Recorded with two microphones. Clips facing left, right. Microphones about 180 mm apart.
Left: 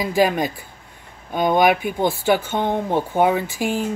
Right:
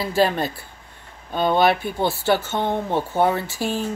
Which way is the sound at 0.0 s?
15° left (ahead or behind).